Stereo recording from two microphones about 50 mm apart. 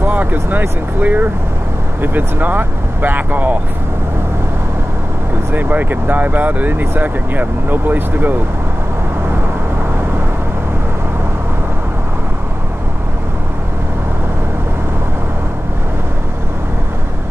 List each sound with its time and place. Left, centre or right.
0.0 s speech: right
5.5 s speech: right